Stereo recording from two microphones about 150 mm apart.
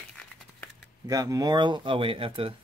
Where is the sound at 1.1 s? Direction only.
25° right (ahead or behind).